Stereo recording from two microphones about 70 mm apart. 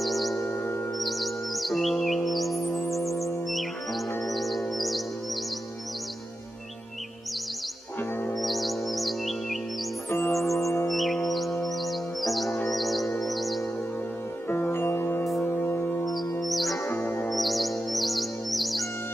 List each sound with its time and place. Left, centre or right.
0.0 s music: centre
8.5 s chirp: centre
8.9 s music: centre
10.0 s music: left
10.9 s music: centre
14.5 s music: left
16.4 s music: centre
16.8 s music: left
17.3 s chirp: centre